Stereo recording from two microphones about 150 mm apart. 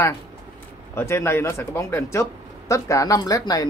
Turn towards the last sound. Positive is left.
turn(degrees=25)  # may be behind; listen again after turning